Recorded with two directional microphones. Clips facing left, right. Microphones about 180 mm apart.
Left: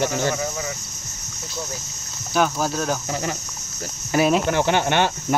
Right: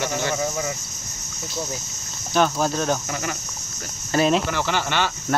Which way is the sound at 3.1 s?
25° left (ahead or behind).